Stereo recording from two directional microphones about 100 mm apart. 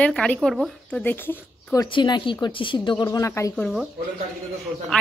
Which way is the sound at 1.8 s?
50° left (ahead or behind).